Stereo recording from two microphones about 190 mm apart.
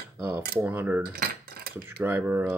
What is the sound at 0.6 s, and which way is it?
Speech, 10° right (ahead or behind).